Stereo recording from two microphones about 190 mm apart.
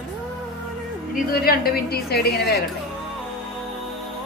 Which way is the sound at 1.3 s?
50° left (ahead or behind).